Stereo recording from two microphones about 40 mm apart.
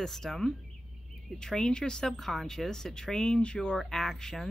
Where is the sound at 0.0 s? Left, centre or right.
Centre.